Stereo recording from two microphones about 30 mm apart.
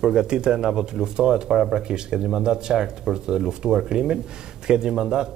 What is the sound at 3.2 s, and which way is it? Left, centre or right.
Speech, right.